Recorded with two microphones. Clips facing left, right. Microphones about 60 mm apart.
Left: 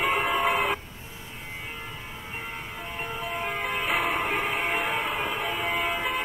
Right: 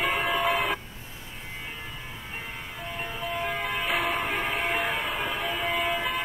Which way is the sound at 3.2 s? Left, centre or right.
Centre.